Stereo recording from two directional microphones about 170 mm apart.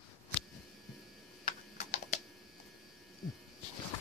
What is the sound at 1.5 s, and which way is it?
Typing, 40° left (ahead or behind).